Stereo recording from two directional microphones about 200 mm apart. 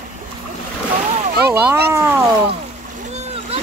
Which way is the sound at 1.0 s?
35° right (ahead or behind).